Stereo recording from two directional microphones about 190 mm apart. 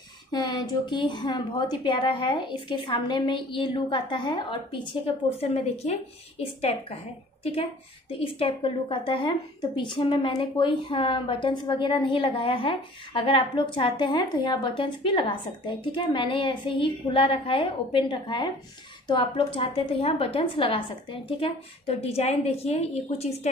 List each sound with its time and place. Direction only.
0.3 s a woman's voice: 20° left (ahead or behind)
8.2 s a woman's voice: 30° left (ahead or behind)